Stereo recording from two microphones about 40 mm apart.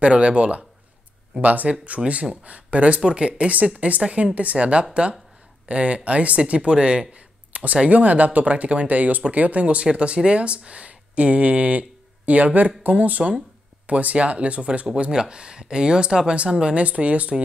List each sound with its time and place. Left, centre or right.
0.0 s speech: right
16.7 s speech: right